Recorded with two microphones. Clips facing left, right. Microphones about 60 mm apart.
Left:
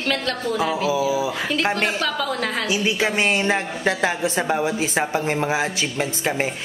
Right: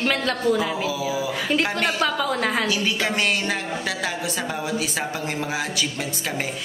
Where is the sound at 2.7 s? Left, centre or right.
Centre.